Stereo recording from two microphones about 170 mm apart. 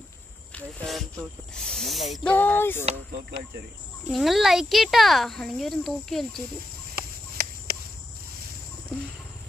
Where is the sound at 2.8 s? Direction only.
40° right (ahead or behind).